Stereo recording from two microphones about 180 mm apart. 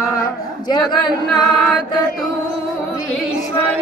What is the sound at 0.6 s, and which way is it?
Speech, 25° left (ahead or behind).